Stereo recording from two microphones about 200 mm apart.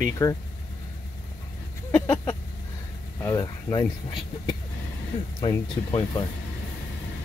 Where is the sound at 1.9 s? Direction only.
15° left (ahead or behind).